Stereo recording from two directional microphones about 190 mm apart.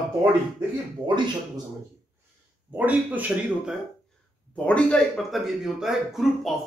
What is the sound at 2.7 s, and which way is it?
Speech, 10° right (ahead or behind).